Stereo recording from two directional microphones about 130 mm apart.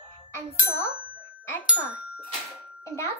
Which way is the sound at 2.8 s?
20° left (ahead or behind).